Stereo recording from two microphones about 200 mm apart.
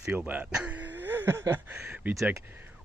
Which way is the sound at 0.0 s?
10° right (ahead or behind).